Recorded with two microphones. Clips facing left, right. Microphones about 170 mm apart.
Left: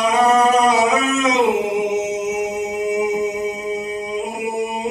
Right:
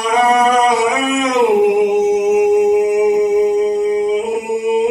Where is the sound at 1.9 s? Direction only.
60° right (ahead or behind).